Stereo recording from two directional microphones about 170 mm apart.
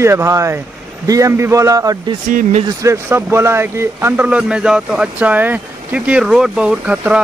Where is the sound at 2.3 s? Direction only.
55° right (ahead or behind).